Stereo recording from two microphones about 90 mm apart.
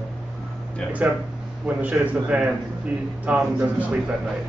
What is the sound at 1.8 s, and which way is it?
Speech, 15° right (ahead or behind).